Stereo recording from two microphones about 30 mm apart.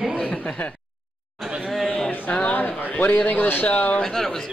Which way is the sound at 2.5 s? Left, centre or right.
Left.